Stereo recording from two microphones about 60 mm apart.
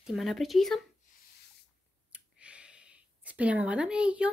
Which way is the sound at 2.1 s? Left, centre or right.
Right.